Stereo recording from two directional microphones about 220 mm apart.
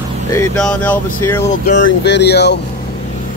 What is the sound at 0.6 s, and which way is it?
Speech, 5° left (ahead or behind).